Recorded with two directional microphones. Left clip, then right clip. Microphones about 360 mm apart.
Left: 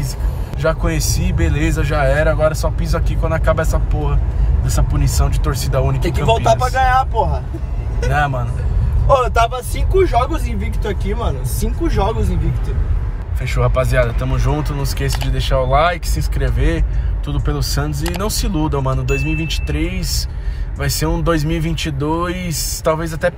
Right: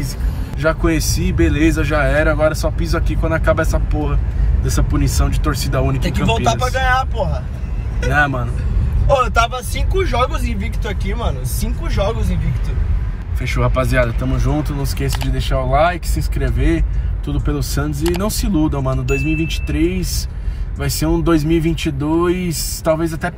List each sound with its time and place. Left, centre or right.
0.6 s speech: centre
6.0 s speech: left
8.1 s speech: centre
9.1 s speech: left
13.4 s speech: centre